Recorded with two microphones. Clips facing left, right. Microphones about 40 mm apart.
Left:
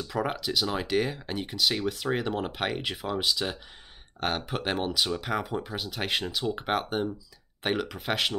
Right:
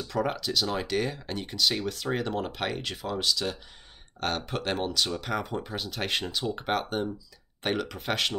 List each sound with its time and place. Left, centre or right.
0.0 s speech: centre